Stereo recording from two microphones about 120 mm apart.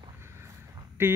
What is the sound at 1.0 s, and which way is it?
Speech, 15° right (ahead or behind).